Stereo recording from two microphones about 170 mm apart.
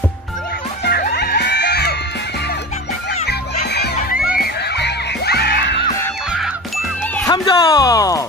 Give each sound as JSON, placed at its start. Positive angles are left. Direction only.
{"t": 1.1, "sound": "music", "side_deg": 75}
{"t": 3.6, "sound": "crowd", "side_deg": 75}
{"t": 4.4, "sound": "music", "side_deg": 75}
{"t": 7.2, "sound": "speech", "side_deg": 20}